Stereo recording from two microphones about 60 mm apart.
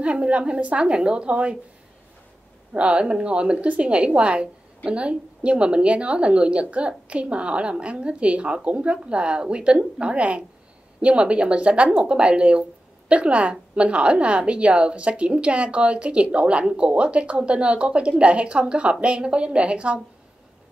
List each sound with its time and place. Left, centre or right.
0.0 s a woman's voice: centre
2.7 s a woman's voice: centre